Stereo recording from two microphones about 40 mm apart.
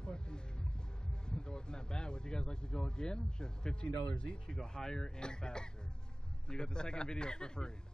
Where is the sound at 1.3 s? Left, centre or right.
Left.